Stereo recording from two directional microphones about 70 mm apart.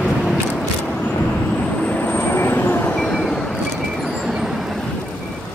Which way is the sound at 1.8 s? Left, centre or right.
Left.